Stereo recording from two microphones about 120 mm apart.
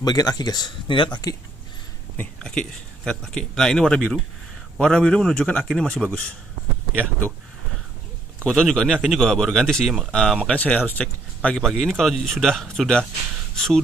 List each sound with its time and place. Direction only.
0.0 s speech: 30° left (ahead or behind)
2.3 s a man's voice: 10° left (ahead or behind)
8.5 s speech: 5° left (ahead or behind)